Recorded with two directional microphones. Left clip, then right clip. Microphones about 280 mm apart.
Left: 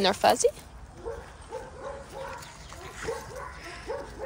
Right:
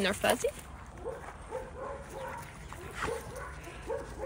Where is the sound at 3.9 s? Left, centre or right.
Left.